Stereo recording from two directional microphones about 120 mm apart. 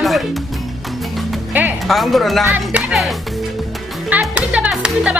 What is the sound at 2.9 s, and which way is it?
Speech, centre (ahead or behind).